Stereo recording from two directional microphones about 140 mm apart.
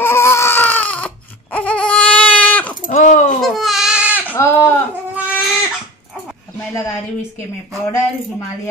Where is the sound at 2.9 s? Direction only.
65° left (ahead or behind).